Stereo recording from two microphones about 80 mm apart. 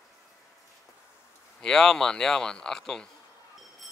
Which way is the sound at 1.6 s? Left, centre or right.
Centre.